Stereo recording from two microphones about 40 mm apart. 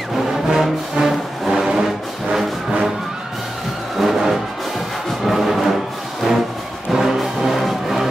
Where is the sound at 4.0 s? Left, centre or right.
Centre.